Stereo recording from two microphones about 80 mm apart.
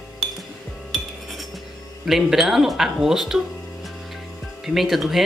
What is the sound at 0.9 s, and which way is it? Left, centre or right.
Cutlery, centre.